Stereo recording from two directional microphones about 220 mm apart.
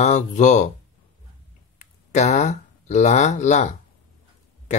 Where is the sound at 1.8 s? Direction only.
30° left (ahead or behind).